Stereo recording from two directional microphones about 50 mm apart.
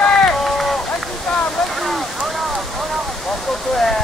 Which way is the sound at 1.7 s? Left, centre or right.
Centre.